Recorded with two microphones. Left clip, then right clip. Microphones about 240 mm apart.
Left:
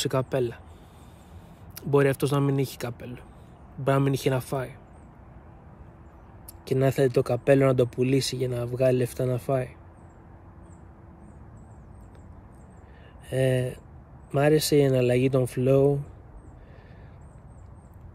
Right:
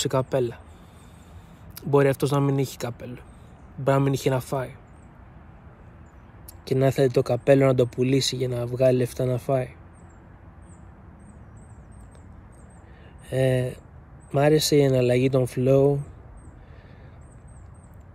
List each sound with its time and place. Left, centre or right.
0.0 s speech: centre
1.8 s speech: centre
6.6 s speech: centre
13.3 s speech: centre